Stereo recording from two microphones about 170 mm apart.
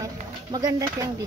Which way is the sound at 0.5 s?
20° right (ahead or behind).